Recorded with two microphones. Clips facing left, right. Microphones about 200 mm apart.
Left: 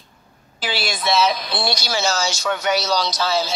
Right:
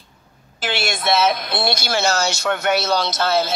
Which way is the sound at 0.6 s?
50° right (ahead or behind).